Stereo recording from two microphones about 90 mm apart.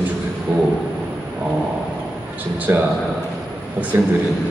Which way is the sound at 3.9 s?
25° right (ahead or behind).